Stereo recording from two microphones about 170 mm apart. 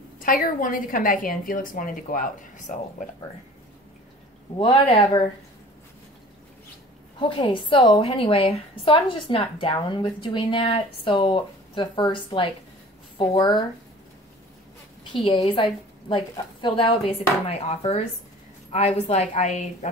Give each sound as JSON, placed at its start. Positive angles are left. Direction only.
{"t": 0.2, "sound": "a woman's voice", "side_deg": 55}
{"t": 4.6, "sound": "speech", "side_deg": 35}
{"t": 7.2, "sound": "a woman's voice", "side_deg": 30}
{"t": 15.1, "sound": "speech", "side_deg": 30}